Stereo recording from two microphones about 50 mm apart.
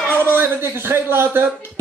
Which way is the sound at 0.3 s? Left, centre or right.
Right.